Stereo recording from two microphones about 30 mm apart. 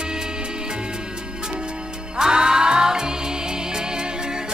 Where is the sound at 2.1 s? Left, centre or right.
Right.